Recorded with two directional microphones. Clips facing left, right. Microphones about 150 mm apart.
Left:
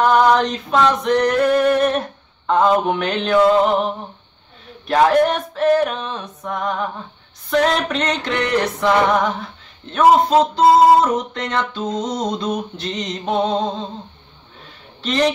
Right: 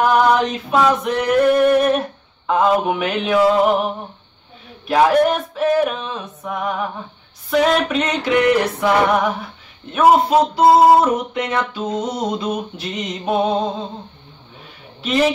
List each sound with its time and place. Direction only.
0.0 s male singing: 5° right (ahead or behind)
8.8 s a sound: 10° right (ahead or behind)
15.0 s speech: 5° right (ahead or behind)